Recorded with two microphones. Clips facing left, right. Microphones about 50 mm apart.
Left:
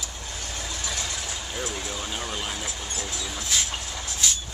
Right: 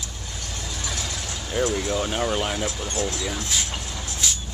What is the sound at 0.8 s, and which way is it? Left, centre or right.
Vehicle, centre.